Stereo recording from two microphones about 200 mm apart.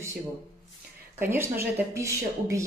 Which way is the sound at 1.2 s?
10° right (ahead or behind).